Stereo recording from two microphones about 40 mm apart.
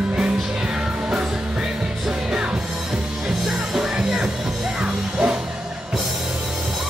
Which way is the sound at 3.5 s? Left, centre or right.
Centre.